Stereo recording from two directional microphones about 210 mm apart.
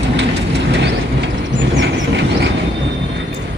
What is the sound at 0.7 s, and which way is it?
Vehicle, 55° right (ahead or behind).